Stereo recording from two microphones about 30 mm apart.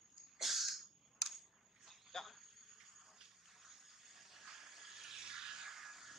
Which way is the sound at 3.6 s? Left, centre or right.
Centre.